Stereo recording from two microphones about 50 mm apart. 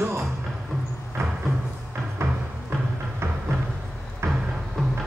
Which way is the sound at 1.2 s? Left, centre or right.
Right.